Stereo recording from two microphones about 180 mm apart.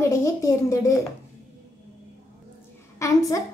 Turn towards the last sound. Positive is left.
turn(degrees=20)  # may be behind; listen again after turning